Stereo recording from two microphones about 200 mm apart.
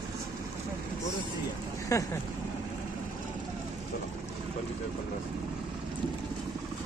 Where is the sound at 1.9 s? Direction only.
15° left (ahead or behind).